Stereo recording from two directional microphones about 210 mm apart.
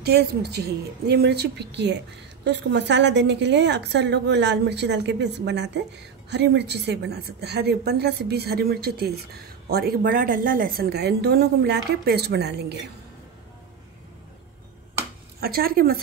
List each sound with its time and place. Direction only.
0.0 s a woman's voice: 50° right (ahead or behind)
15.4 s a woman's voice: 45° right (ahead or behind)